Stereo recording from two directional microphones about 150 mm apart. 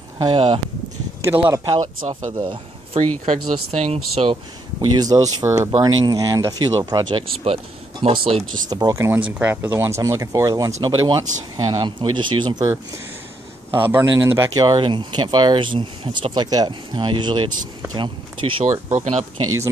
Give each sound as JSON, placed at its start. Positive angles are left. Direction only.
{"t": 0.2, "sound": "speech", "side_deg": -35}
{"t": 1.2, "sound": "speech", "side_deg": -15}
{"t": 1.8, "sound": "speech", "side_deg": -55}
{"t": 2.3, "sound": "speech", "side_deg": -35}
{"t": 3.3, "sound": "speech", "side_deg": -55}
{"t": 7.3, "sound": "speech", "side_deg": -40}
{"t": 8.6, "sound": "speech", "side_deg": -25}
{"t": 18.7, "sound": "speech", "side_deg": -50}